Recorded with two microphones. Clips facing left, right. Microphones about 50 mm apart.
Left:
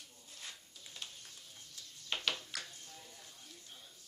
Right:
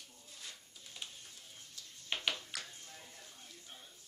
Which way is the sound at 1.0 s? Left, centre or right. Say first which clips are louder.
Right 1 dB; centre.